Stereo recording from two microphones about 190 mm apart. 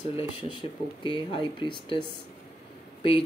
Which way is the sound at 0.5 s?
25° left (ahead or behind).